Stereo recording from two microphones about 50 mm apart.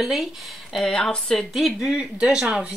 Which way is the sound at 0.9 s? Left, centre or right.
Centre.